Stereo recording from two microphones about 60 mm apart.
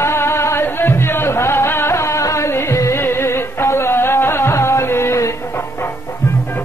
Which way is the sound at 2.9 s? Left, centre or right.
Left.